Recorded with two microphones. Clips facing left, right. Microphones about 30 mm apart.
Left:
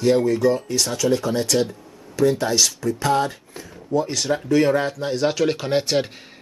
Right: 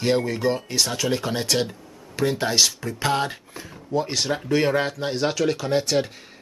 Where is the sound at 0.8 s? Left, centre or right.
Right.